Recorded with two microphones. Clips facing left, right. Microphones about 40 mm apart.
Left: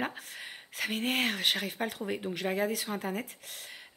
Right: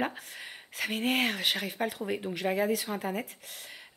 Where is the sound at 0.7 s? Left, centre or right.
Centre.